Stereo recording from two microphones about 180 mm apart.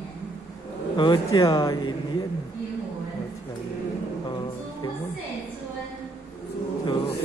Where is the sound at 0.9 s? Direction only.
25° left (ahead or behind).